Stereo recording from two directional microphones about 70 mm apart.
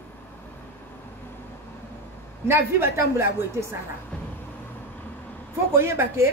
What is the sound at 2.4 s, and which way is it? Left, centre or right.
Speech, right.